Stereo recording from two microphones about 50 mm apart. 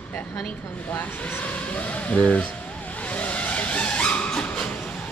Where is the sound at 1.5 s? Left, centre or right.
Left.